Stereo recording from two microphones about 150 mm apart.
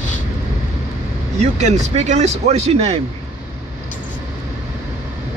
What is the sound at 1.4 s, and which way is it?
Speech, 50° right (ahead or behind).